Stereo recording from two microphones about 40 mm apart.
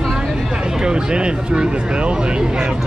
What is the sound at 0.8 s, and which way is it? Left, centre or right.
Speech, right.